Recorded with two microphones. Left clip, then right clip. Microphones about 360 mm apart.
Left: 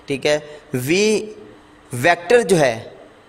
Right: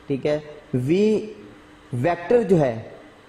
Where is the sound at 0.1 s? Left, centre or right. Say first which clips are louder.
Left 5 dB; left.